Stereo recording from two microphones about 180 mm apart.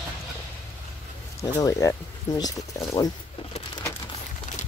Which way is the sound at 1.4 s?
20° left (ahead or behind).